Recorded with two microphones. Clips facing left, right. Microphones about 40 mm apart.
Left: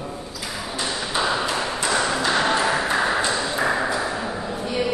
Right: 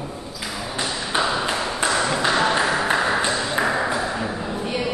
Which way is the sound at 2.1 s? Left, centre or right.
Right.